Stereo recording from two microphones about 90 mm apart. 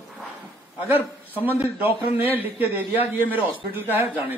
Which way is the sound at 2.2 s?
20° right (ahead or behind).